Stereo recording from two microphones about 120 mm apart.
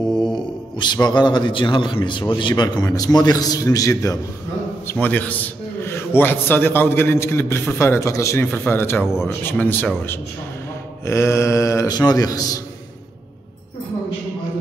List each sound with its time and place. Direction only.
0.2 s mantra: 40° left (ahead or behind)
1.0 s a man's voice: 40° left (ahead or behind)
5.0 s a man's voice: 15° left (ahead or behind); by 12.6 s 30° left (ahead or behind)